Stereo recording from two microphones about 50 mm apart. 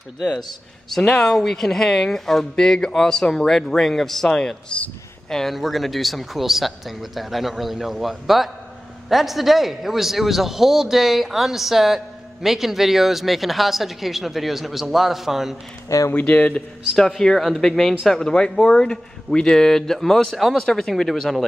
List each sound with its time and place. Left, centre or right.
0.9 s a man's voice: centre
16.1 s speech: left
16.9 s speech: centre